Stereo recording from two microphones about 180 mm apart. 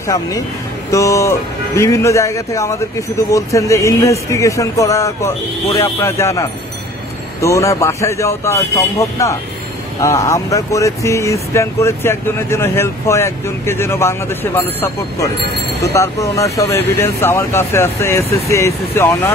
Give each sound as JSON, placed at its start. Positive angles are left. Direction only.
{"t": 0.0, "sound": "speech", "side_deg": 20}